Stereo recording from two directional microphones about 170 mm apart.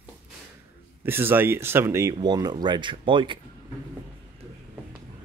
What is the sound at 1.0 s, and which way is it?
Speech, 15° right (ahead or behind).